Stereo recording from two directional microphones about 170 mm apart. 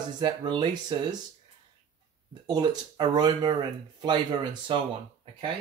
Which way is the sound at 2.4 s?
25° right (ahead or behind).